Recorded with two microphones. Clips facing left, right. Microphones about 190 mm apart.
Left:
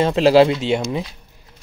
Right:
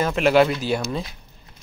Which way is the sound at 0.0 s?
30° left (ahead or behind).